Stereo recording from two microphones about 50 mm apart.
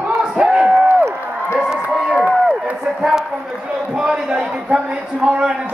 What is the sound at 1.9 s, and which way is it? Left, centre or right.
Crowd, centre.